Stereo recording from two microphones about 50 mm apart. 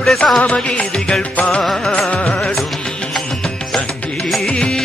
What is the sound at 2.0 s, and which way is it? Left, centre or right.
Music, left.